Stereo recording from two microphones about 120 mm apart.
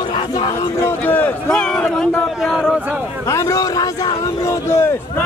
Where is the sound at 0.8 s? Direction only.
15° left (ahead or behind).